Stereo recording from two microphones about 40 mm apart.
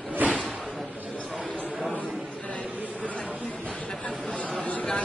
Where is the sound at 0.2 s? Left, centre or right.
Right.